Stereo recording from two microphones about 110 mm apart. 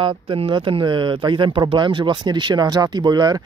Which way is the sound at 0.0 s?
50° right (ahead or behind).